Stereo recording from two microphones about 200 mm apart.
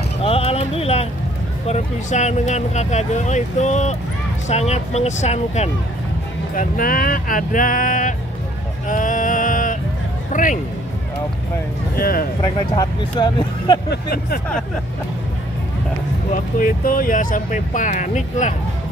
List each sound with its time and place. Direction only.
0.2 s a sound: 30° left (ahead or behind)
1.7 s speech: 35° left (ahead or behind)
8.8 s male singing: 40° left (ahead or behind)
10.3 s speech: 40° left (ahead or behind)
12.0 s speech: 45° left (ahead or behind)
12.4 s speech: 20° left (ahead or behind)
13.8 s speech: 50° left (ahead or behind)
16.5 s speech: 45° left (ahead or behind)